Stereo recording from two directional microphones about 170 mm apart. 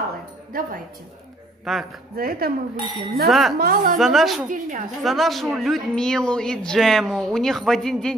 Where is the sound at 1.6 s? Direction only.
Centre (ahead or behind).